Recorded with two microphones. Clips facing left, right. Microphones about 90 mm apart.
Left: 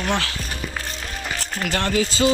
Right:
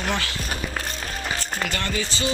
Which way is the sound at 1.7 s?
85° left.